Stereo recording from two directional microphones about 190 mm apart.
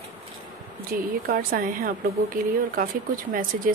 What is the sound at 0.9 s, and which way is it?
Speech, 50° right (ahead or behind).